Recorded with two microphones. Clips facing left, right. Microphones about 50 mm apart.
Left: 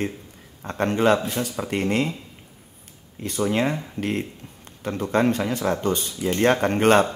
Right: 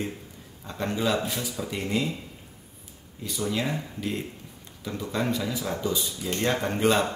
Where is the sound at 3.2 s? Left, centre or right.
Left.